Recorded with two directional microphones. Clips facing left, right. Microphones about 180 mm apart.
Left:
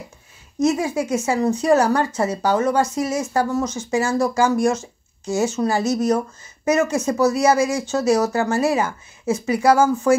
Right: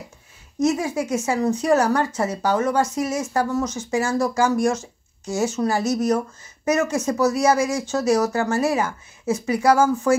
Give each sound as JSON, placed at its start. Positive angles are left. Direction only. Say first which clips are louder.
{"t": 0.6, "sound": "a woman's voice", "louder": "left 2 dB", "side_deg": 30}